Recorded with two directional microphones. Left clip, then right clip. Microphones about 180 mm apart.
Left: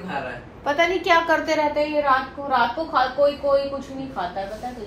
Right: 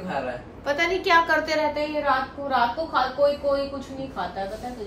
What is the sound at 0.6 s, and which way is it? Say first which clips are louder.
A woman's voice: left 3 dB; 20° left (ahead or behind).